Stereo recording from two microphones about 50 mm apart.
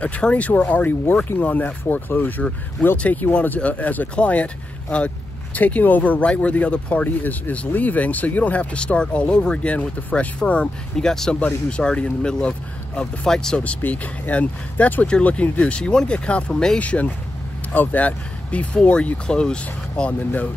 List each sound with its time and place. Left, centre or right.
0.0 s speech: left
13.3 s speech: centre
13.8 s speech: left
14.3 s speech: left
16.8 s speech: left